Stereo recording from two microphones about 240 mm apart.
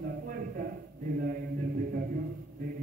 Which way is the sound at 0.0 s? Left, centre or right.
Right.